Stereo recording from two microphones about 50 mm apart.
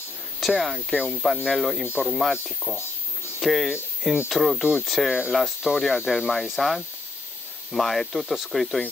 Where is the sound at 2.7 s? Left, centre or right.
Centre.